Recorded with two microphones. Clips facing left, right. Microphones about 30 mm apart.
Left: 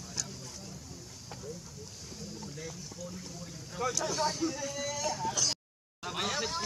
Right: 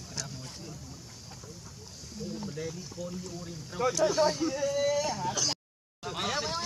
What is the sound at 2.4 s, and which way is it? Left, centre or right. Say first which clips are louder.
Speech: right 5 dB; centre.